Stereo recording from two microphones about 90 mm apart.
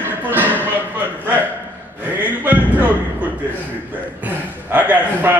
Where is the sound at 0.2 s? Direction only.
20° right (ahead or behind).